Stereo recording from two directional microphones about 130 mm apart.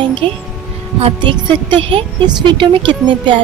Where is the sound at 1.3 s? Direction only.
40° right (ahead or behind).